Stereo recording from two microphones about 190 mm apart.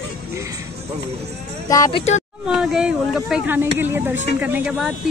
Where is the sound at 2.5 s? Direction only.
5° right (ahead or behind).